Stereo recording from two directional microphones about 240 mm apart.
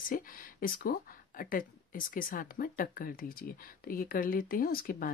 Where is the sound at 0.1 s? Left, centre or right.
Left.